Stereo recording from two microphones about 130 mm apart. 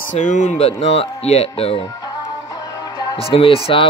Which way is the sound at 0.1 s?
70° left (ahead or behind).